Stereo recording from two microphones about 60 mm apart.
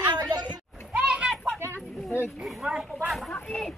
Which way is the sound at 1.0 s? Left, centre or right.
Centre.